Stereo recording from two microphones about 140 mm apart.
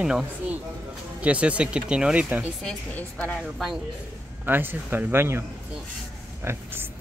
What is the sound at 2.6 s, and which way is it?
Speech, 5° left (ahead or behind).